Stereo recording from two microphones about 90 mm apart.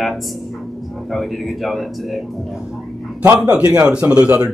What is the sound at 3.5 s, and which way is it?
Speech, 10° right (ahead or behind).